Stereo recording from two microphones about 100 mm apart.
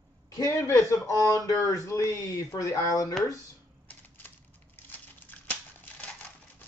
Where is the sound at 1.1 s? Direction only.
30° right (ahead or behind).